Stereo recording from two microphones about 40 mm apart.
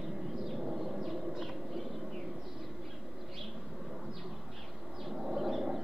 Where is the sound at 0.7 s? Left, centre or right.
Centre.